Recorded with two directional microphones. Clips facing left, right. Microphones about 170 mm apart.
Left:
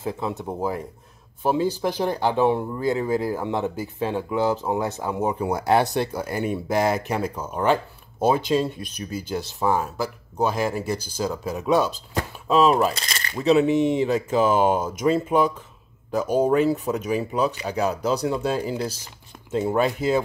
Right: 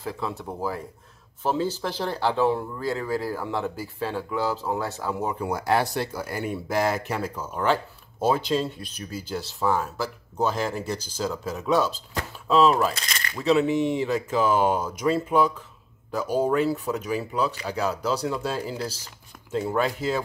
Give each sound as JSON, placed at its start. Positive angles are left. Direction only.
{"t": 0.0, "sound": "speech", "side_deg": 20}
{"t": 12.9, "sound": "speech", "side_deg": 30}